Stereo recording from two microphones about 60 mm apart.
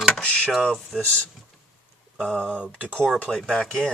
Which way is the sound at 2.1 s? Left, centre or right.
Centre.